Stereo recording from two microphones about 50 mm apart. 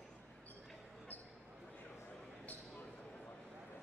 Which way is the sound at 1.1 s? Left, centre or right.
Left.